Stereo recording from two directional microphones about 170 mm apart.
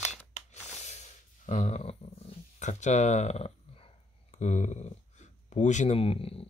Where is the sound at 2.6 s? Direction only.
45° left (ahead or behind).